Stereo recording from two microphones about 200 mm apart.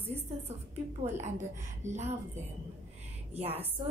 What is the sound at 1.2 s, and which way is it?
Speech, 35° right (ahead or behind).